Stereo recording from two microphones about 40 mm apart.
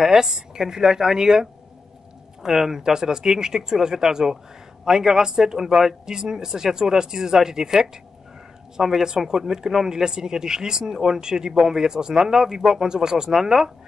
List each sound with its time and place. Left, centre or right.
0.0 s speech: centre